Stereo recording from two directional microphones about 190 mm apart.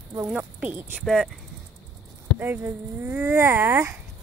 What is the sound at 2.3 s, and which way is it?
Speech, 10° right (ahead or behind).